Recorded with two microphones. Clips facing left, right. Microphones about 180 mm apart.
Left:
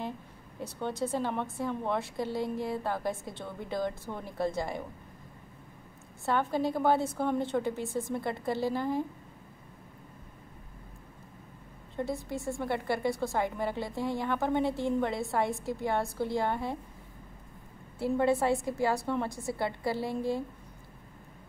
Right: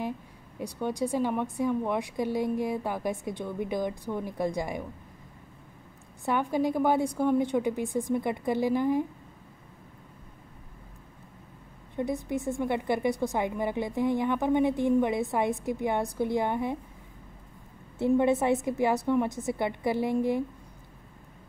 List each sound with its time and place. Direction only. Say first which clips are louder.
0.6 s a woman's voice: right 3 dB; 10° right (ahead or behind)
6.2 s a woman's voice: right 2 dB; 15° right (ahead or behind)
11.9 s a woman's voice: right 4 dB; 20° right (ahead or behind)
17.9 s a woman's voice: right 4 dB; 20° right (ahead or behind)